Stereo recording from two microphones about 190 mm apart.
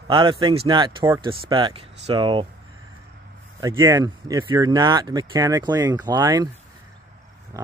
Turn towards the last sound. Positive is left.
turn(degrees=-20)  # may be behind; listen again after turning